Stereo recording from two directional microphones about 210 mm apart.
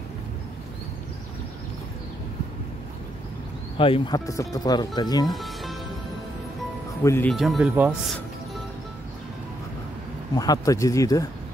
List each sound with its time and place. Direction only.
3.7 s speech: 25° left (ahead or behind)
5.3 s music: centre (ahead or behind)
7.0 s speech: 10° left (ahead or behind)
7.3 s speech: centre (ahead or behind)
10.3 s speech: 15° left (ahead or behind)